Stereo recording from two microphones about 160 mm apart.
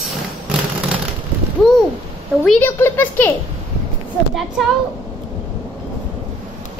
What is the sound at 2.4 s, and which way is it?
Speech, 10° left (ahead or behind).